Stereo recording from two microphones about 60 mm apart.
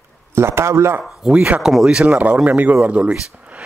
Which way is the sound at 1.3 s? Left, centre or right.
Right.